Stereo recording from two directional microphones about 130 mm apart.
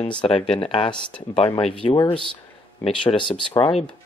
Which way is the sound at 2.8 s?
40° left (ahead or behind).